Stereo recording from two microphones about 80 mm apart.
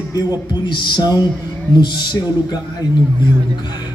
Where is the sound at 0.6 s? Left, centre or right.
Left.